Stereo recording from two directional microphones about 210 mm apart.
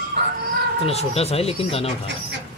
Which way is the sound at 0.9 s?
30° left (ahead or behind).